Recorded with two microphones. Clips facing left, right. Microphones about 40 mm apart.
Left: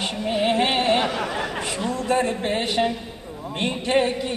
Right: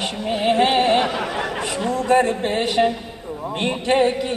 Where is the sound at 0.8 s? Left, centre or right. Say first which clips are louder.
Right 3 dB; right.